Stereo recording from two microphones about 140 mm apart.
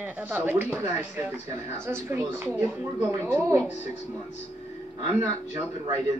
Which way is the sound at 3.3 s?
15° right (ahead or behind).